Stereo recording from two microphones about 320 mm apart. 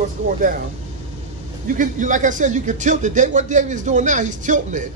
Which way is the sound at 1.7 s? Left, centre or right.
Right.